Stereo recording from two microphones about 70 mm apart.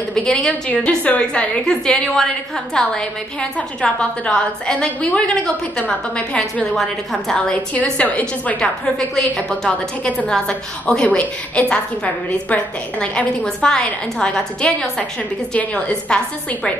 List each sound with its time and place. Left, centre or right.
0.1 s a woman's voice: centre
7.7 s a woman's voice: left